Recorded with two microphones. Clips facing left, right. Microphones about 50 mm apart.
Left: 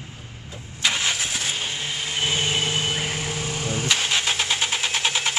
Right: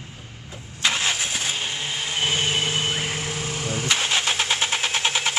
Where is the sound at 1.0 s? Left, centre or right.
Right.